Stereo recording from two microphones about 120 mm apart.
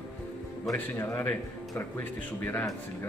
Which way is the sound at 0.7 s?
20° left (ahead or behind).